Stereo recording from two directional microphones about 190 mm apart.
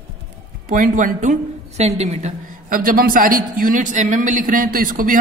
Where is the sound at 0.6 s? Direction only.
45° right (ahead or behind).